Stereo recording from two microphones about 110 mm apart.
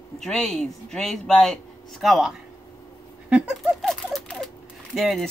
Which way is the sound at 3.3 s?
5° right (ahead or behind).